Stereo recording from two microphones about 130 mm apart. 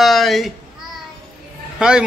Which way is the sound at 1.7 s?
5° right (ahead or behind).